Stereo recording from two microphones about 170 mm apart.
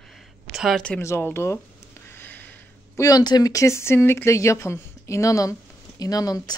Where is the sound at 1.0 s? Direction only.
15° left (ahead or behind).